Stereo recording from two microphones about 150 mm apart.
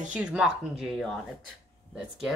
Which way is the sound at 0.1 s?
5° right (ahead or behind).